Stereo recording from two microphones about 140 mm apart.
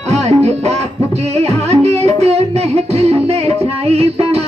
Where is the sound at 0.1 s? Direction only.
50° right (ahead or behind).